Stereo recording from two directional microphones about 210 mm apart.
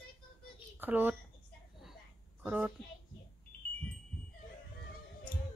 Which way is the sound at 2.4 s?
5° right (ahead or behind).